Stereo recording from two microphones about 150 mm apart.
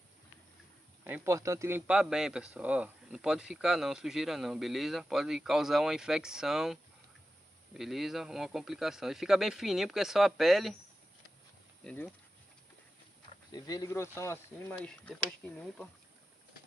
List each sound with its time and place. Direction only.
1.0 s speech: 15° right (ahead or behind)
11.8 s speech: 10° left (ahead or behind)
13.5 s speech: 25° left (ahead or behind); by 15.9 s 5° left (ahead or behind)